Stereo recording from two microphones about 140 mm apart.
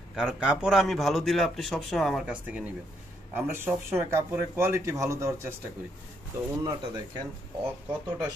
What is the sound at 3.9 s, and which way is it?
Speech, 15° right (ahead or behind).